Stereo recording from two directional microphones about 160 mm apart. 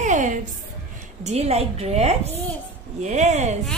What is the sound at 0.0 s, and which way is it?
Music, 50° right (ahead or behind).